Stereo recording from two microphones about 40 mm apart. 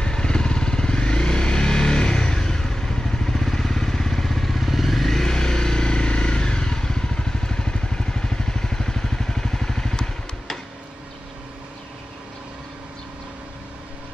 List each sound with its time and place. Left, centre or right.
0.0 s motorcycle: left